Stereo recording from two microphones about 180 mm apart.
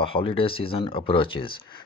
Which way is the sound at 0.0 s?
30° left (ahead or behind).